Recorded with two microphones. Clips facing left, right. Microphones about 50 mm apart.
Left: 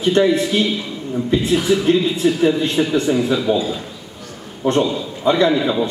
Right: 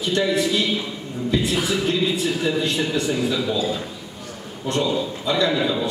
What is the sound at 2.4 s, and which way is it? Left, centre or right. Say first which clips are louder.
Speech: left 6 dB; left.